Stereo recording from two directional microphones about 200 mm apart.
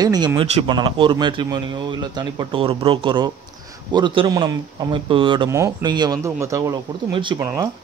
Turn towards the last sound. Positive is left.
turn(degrees=-25)  # may be behind; listen again after turning